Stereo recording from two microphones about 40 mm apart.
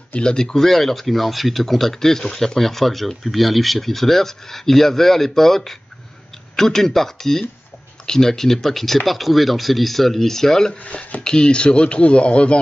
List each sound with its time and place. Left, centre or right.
0.2 s speech: centre
10.9 s speech: left
11.2 s speech: left